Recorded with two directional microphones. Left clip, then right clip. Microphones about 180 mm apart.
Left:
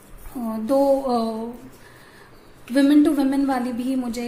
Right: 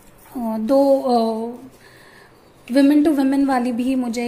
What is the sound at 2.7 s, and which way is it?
A woman's voice, 20° right (ahead or behind).